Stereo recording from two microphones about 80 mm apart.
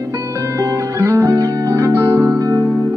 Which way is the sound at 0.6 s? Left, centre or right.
Right.